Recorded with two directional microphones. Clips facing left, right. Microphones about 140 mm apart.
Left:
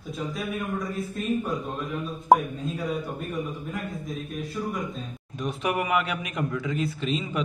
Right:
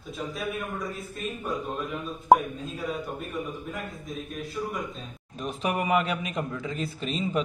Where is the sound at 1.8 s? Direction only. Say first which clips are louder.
Left 1 dB; centre (ahead or behind).